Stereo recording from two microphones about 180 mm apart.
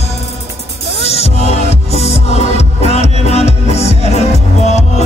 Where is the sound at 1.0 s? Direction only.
35° left (ahead or behind).